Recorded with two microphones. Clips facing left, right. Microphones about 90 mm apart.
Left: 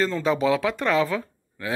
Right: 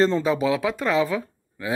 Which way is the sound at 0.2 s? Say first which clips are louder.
Even; 10° right (ahead or behind).